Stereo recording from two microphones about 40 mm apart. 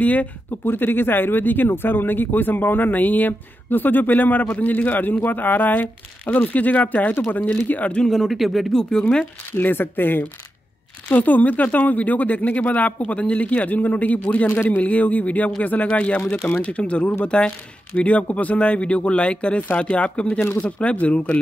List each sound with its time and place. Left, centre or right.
0.0 s speech: left
0.7 s speech: left
1.7 s speech: left
8.1 s speech: centre
9.5 s speech: left
11.1 s speech: left